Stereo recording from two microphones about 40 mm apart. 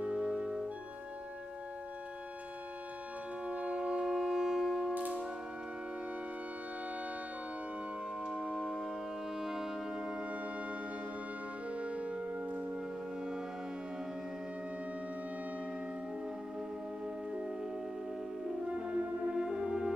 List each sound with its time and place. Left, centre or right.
0.0 s music: right
3.4 s organ: right
3.8 s music: centre
8.3 s organ: right
9.4 s music: centre
11.7 s music: right
18.7 s music: right